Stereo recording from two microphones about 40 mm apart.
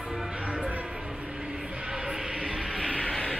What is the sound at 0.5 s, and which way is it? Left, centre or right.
Music, right.